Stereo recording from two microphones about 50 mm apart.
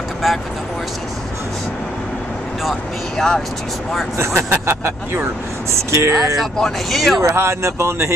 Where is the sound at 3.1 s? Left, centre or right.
Centre.